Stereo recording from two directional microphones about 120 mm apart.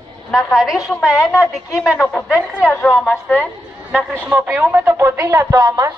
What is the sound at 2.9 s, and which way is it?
Speech, 10° left (ahead or behind).